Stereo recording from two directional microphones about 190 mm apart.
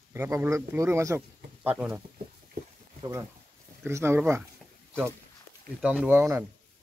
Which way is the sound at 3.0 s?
15° right (ahead or behind).